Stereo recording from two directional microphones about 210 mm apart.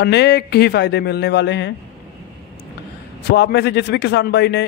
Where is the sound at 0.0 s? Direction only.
50° left (ahead or behind).